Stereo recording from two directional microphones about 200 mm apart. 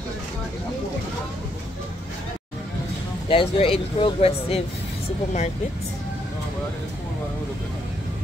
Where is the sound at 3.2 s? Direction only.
25° left (ahead or behind).